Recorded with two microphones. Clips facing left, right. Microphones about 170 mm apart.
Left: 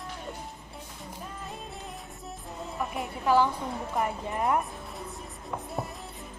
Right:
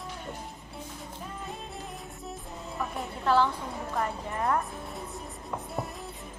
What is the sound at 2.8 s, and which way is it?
Music, 5° left (ahead or behind).